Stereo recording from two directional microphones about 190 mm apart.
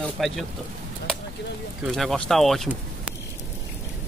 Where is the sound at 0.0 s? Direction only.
Centre (ahead or behind).